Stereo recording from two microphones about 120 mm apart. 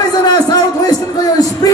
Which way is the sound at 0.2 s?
35° left (ahead or behind).